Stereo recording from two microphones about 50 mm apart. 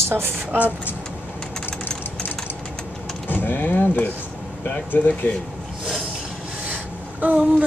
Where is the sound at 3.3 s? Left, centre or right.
Left.